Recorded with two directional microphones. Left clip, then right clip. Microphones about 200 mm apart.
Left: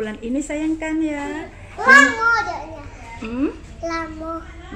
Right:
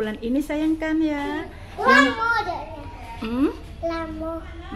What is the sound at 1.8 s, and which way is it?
A child's voice, 20° right (ahead or behind).